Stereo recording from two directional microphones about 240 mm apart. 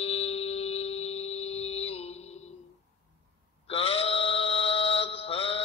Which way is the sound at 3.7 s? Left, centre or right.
Left.